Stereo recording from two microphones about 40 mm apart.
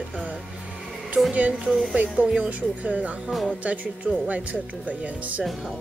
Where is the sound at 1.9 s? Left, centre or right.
Right.